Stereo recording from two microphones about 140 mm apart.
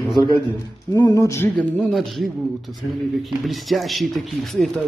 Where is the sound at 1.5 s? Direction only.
5° left (ahead or behind).